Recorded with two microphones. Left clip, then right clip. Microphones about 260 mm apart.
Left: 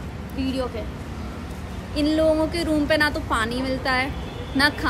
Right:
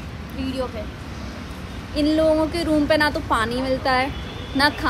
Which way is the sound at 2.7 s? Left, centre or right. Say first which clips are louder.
Right 2 dB; centre.